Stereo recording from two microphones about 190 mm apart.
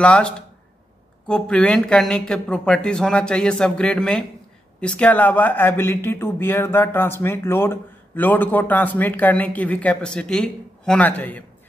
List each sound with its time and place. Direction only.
0.0 s speech: 5° left (ahead or behind)